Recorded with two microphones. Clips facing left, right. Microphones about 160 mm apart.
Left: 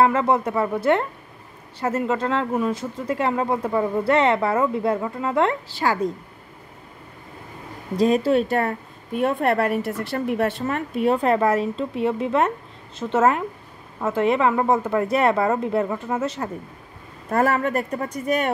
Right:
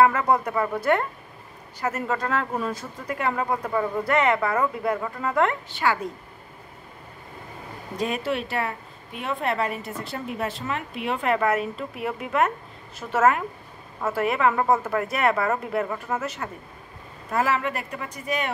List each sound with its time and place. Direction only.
0.0 s speech: 25° left (ahead or behind)
7.9 s speech: 35° left (ahead or behind); by 10.8 s 60° left (ahead or behind)
11.0 s speech: 35° left (ahead or behind)
17.3 s speech: 50° left (ahead or behind)